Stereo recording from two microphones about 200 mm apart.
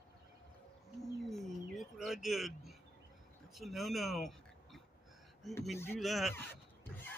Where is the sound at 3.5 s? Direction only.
Centre (ahead or behind).